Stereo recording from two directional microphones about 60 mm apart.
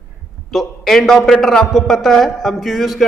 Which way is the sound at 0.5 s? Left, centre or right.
Centre.